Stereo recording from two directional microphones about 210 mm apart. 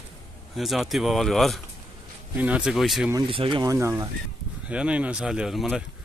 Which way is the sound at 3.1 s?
25° right (ahead or behind).